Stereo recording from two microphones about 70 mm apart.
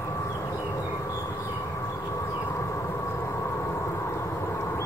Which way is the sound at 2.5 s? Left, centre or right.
Left.